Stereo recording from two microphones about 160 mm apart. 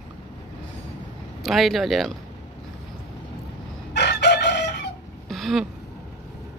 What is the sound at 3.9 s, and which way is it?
Chicken, 90° left.